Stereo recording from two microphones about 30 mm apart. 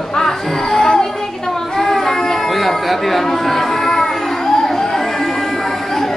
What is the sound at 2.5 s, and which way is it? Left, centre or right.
Chatter, centre.